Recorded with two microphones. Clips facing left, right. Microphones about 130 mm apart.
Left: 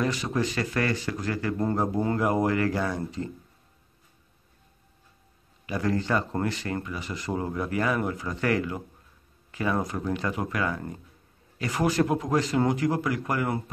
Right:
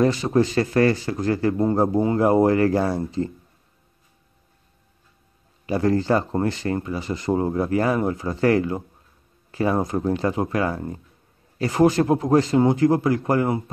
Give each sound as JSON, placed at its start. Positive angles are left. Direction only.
{"t": 0.0, "sound": "speech", "side_deg": -35}
{"t": 5.7, "sound": "speech", "side_deg": -35}